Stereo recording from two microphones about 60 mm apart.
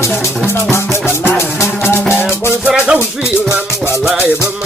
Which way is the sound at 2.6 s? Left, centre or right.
Centre.